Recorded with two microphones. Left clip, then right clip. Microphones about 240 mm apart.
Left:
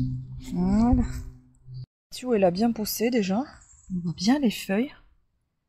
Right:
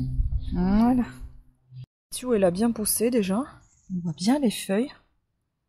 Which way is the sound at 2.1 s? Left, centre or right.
Centre.